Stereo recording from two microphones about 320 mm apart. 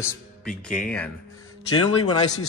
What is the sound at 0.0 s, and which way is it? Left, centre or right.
A man's voice, centre.